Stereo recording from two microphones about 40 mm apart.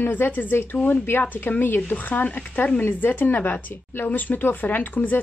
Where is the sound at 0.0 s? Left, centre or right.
Left.